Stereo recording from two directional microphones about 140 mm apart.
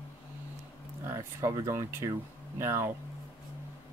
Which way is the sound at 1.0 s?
20° right (ahead or behind).